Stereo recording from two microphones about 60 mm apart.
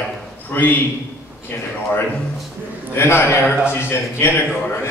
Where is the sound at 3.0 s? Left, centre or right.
Left.